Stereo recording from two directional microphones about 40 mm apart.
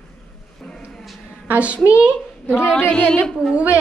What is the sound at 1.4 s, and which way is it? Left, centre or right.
Speech, right.